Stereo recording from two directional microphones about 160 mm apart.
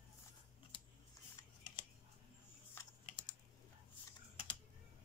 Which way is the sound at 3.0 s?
30° left (ahead or behind).